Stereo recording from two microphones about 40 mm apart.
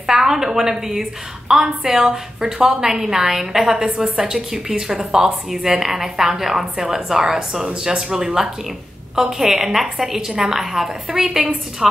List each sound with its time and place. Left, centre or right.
0.0 s a woman's voice: centre
3.8 s a woman's voice: right